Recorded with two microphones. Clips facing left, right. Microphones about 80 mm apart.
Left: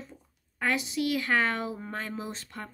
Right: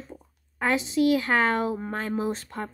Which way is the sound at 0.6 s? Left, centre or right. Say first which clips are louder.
Right 6 dB; right.